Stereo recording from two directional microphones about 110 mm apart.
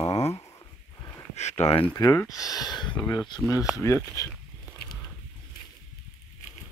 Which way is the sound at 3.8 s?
25° left (ahead or behind).